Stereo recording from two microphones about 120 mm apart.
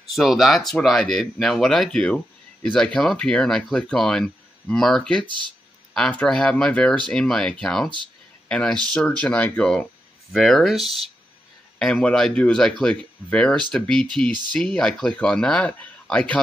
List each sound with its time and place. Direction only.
0.1 s speech: centre (ahead or behind)
5.2 s speech: 40° right (ahead or behind)
5.9 s speech: 10° left (ahead or behind)